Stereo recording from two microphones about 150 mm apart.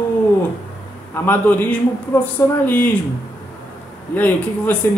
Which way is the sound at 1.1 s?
15° left (ahead or behind).